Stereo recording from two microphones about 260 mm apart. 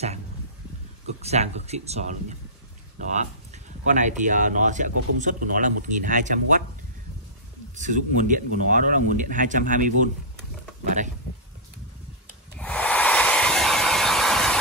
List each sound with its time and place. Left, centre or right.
1.2 s speech: right
7.7 s speech: right
12.5 s a sound: centre